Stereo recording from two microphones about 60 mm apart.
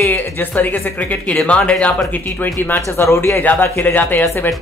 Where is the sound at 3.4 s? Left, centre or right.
Left.